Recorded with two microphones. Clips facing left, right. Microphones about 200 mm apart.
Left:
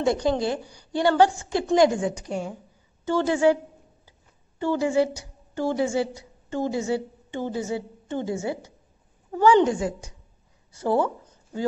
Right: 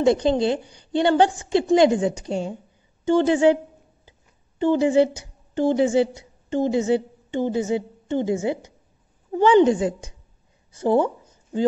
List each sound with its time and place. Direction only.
0.0 s a woman's voice: 20° right (ahead or behind)
4.6 s a woman's voice: 20° right (ahead or behind)